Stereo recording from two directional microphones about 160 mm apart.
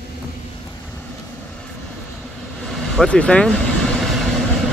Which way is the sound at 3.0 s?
5° left (ahead or behind).